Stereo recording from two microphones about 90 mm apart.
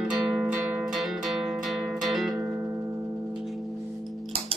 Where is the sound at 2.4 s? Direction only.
30° right (ahead or behind).